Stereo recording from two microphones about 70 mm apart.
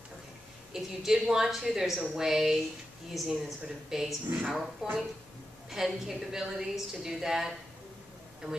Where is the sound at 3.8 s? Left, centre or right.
Centre.